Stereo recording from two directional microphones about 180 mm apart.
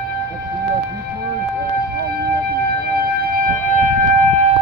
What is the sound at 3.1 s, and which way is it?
Music, 55° right (ahead or behind).